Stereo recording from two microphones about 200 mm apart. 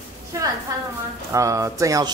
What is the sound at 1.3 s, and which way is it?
Speech, 15° right (ahead or behind).